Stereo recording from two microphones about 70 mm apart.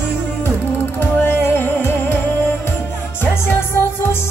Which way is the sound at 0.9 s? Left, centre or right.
Left.